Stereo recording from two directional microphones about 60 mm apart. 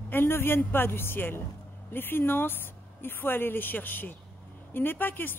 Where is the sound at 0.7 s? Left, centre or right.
Left.